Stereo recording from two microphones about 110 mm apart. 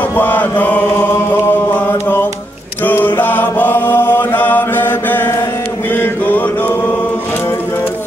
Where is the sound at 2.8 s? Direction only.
15° left (ahead or behind).